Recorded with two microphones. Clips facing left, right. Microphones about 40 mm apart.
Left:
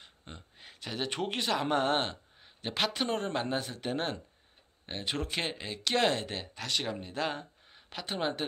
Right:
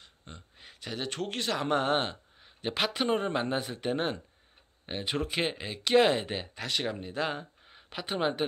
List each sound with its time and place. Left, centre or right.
0.0 s a sound: centre
0.6 s speech: centre
1.1 s speech: centre
1.4 s a man's voice: centre